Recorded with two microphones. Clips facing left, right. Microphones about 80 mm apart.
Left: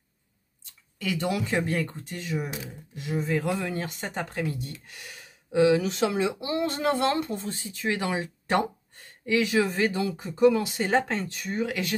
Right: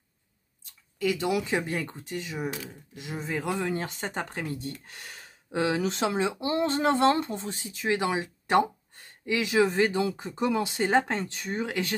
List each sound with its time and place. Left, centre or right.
1.1 s speech: centre; by 11.9 s right